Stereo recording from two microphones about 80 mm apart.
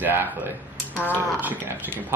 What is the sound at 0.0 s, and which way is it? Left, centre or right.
Speech, right.